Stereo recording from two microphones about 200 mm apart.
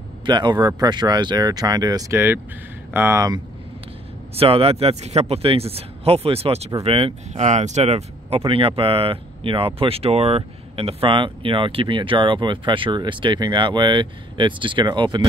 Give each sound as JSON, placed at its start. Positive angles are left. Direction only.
{"t": 0.2, "sound": "speech", "side_deg": -20}
{"t": 4.4, "sound": "speech", "side_deg": -30}